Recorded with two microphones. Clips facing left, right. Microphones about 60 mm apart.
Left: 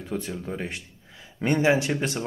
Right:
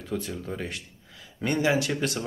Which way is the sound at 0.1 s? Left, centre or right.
Left.